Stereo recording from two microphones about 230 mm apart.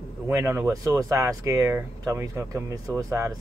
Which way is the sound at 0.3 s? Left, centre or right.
Centre.